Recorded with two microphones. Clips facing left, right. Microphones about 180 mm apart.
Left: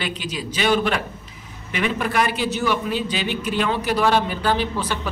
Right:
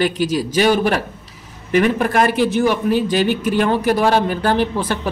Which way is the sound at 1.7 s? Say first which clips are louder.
Right 7 dB; 45° right (ahead or behind).